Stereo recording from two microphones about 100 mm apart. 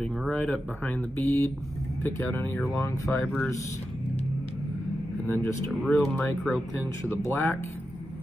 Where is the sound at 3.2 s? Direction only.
5° left (ahead or behind).